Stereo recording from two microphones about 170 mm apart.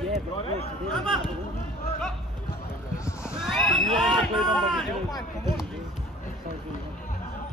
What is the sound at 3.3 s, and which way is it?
Speech, 5° right (ahead or behind).